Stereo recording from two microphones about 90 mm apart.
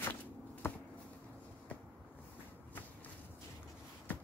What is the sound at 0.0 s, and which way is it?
Shuffling cards, 20° left (ahead or behind).